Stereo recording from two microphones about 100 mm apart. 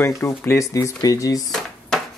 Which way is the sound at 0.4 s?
30° left (ahead or behind).